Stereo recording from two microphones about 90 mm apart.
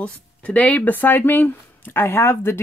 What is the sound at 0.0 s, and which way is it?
Speech, 15° left (ahead or behind).